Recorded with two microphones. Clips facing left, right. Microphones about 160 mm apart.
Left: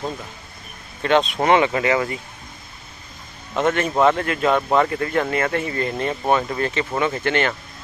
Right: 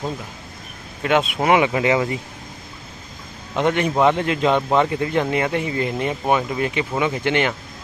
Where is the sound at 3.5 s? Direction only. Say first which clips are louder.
Right 1 dB; 15° right (ahead or behind).